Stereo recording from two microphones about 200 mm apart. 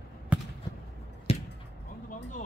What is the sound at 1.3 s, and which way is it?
Chop, 30° left (ahead or behind).